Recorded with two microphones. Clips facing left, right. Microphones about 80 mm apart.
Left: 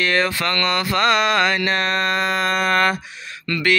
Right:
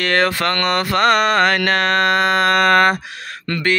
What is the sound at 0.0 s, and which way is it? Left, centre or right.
Speech, right.